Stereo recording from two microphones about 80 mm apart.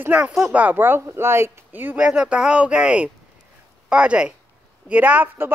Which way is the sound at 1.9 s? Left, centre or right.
Centre.